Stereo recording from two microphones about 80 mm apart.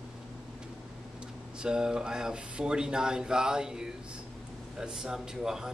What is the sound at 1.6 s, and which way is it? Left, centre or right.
Speech, centre.